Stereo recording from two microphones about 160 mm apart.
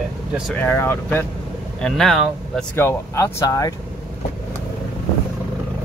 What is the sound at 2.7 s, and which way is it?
Speech, 15° left (ahead or behind).